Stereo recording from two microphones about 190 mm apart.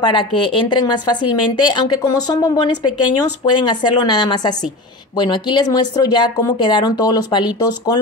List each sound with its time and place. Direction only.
0.0 s a woman's voice: 25° left (ahead or behind)